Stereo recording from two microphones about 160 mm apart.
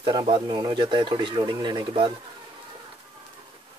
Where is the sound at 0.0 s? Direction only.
30° right (ahead or behind).